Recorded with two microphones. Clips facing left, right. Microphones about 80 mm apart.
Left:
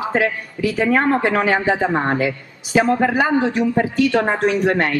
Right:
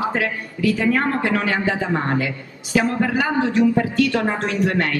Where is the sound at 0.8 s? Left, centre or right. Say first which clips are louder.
Left 7 dB; left.